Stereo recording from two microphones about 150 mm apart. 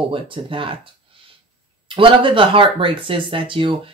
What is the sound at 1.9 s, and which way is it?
Speech, 35° right (ahead or behind).